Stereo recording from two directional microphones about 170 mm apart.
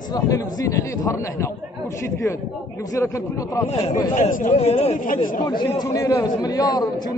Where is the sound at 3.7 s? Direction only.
40° left (ahead or behind).